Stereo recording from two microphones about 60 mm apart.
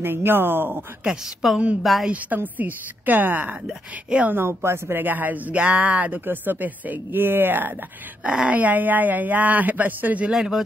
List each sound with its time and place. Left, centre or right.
0.0 s speech: right
1.4 s a woman's voice: centre
2.0 s speech: right
3.6 s speech: centre
4.3 s speech: right
5.0 s speech: right
6.2 s speech: right
8.2 s speech: centre
10.3 s speech: centre